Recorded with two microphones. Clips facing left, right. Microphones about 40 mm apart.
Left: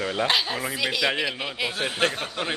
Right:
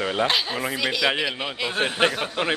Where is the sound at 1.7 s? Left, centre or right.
Right.